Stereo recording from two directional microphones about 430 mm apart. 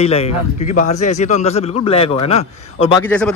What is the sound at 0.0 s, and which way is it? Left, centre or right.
Speech, centre.